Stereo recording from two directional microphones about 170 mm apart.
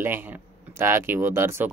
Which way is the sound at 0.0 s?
10° right (ahead or behind).